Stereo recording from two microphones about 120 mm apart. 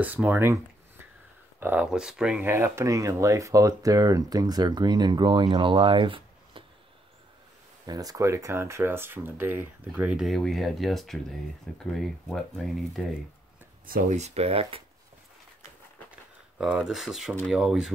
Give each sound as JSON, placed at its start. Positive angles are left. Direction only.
{"t": 0.0, "sound": "speech", "side_deg": -15}
{"t": 2.4, "sound": "speech", "side_deg": -20}
{"t": 7.8, "sound": "speech", "side_deg": -30}
{"t": 10.1, "sound": "speech", "side_deg": 0}
{"t": 14.0, "sound": "speech", "side_deg": -70}
{"t": 16.1, "sound": "a sound", "side_deg": -5}
{"t": 17.5, "sound": "speech", "side_deg": -5}